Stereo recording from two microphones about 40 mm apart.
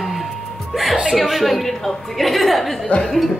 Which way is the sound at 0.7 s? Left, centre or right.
Centre.